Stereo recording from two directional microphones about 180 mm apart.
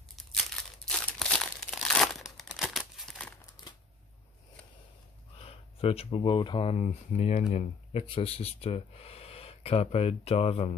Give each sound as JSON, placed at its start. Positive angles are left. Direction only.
{"t": 0.8, "sound": "crumpling", "side_deg": 5}
{"t": 5.4, "sound": "speech", "side_deg": 30}